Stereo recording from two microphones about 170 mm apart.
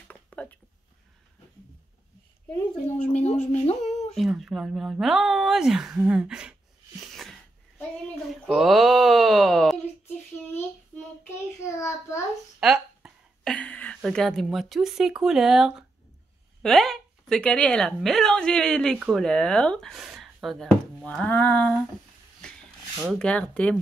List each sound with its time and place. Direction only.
0.1 s a sound: 10° left (ahead or behind)
2.9 s speech: 40° left (ahead or behind)
4.2 s speech: centre (ahead or behind)
7.1 s sneeze: centre (ahead or behind)
8.3 s a sound: centre (ahead or behind)
11.2 s child singing: 15° left (ahead or behind)
12.5 s a sound: 5° right (ahead or behind)
13.5 s a woman's voice: 10° left (ahead or behind)
23.0 s speech: 5° left (ahead or behind)